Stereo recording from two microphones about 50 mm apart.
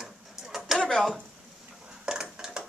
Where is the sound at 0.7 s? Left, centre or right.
Centre.